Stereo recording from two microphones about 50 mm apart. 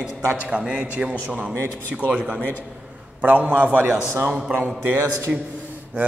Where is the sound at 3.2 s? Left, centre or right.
Right.